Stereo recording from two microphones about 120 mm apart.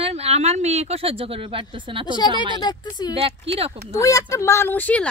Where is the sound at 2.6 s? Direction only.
35° left (ahead or behind).